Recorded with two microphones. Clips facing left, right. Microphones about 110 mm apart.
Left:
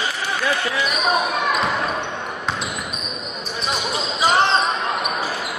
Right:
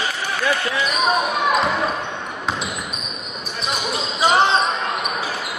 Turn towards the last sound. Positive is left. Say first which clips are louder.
# right 1 dB
turn(degrees=0)  # may be behind; listen again after turning